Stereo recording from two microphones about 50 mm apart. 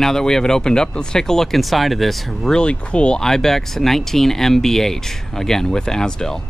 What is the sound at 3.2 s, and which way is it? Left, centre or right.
Speech, centre.